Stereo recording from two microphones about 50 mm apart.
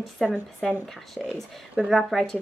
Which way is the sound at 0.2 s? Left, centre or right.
Centre.